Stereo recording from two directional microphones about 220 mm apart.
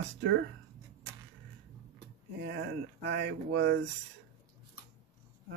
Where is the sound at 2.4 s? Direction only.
50° right (ahead or behind).